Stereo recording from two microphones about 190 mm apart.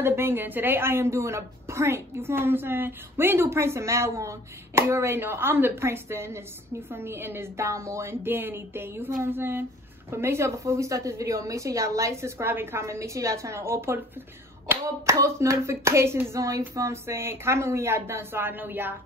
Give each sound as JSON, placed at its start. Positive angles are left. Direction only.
{"t": 0.0, "sound": "a woman's voice", "side_deg": -10}